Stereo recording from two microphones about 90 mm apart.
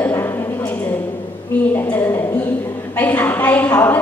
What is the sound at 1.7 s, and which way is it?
A woman's voice, 25° left (ahead or behind).